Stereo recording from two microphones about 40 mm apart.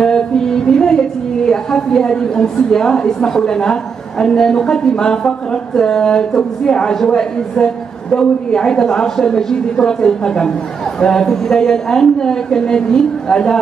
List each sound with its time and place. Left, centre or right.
0.0 s speech: centre